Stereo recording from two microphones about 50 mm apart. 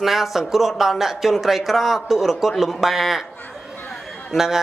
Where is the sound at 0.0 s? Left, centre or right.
Centre.